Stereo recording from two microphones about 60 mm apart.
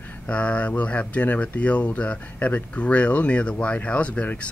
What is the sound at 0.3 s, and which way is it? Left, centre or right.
Speech, left.